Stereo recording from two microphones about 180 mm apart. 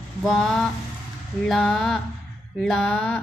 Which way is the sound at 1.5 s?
Centre (ahead or behind).